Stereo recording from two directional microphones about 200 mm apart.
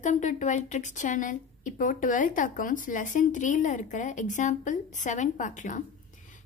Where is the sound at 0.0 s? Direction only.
35° left (ahead or behind).